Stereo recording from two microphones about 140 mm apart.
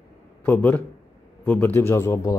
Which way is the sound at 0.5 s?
10° left (ahead or behind).